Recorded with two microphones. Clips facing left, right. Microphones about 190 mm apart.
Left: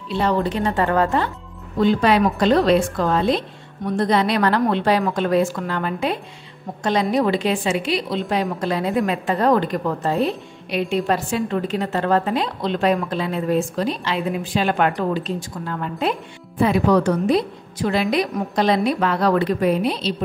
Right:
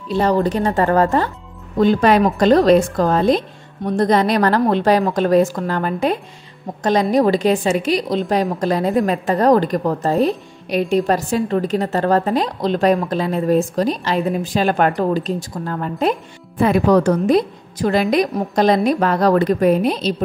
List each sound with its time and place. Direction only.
0.1 s a woman's voice: 40° right (ahead or behind)